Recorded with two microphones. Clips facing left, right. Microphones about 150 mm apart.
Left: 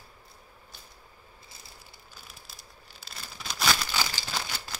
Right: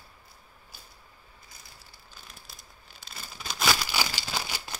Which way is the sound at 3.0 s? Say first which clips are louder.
Even; centre (ahead or behind).